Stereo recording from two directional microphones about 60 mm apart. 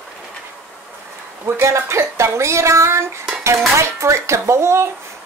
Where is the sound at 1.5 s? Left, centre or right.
Right.